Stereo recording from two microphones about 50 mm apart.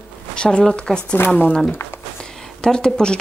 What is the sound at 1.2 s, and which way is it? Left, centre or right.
Speech, left.